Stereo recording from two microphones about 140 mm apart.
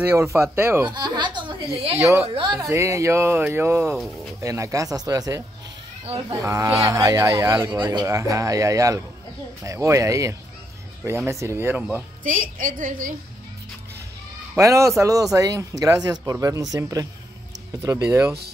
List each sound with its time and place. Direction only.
0.0 s speech: 20° right (ahead or behind)
0.8 s chuckle: 30° right (ahead or behind)
2.0 s speech: 15° right (ahead or behind)
2.2 s a woman's voice: 35° right (ahead or behind)
2.7 s speech: 20° right (ahead or behind)
3.8 s speech: centre (ahead or behind)
4.4 s speech: 25° right (ahead or behind)
12.2 s a woman's voice: 75° right (ahead or behind)
14.6 s speech: 20° right (ahead or behind)